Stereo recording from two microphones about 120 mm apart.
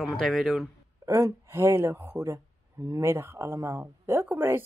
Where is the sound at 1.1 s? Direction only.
25° right (ahead or behind).